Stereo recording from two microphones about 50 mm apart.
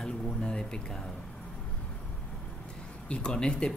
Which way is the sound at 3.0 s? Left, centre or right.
Centre.